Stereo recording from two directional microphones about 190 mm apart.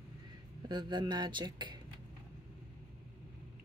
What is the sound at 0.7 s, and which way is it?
A woman's voice, 25° right (ahead or behind).